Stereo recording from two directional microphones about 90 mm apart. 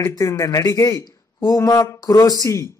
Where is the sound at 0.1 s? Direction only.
35° left (ahead or behind).